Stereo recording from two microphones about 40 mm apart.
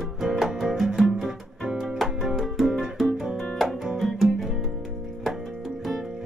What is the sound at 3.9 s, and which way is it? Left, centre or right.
Music, centre.